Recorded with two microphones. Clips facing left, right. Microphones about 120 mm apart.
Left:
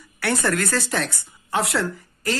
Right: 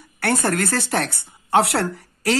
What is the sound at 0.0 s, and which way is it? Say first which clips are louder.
A woman's voice: right 2 dB; 60° right (ahead or behind).